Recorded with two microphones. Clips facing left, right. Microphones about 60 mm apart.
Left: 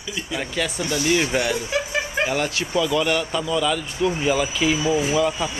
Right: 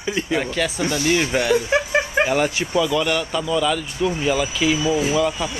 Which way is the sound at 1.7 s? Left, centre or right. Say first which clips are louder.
Right 5 dB; right.